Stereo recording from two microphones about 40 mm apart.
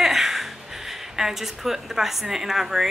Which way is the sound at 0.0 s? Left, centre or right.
Centre.